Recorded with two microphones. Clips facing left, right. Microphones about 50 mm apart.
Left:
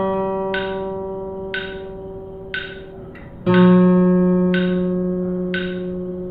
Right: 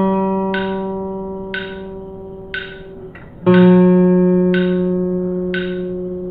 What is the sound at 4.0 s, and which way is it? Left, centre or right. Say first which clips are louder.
Music: right 3 dB; centre.